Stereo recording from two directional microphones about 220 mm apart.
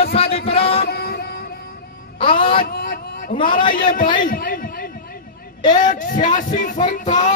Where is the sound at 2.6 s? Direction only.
40° left (ahead or behind).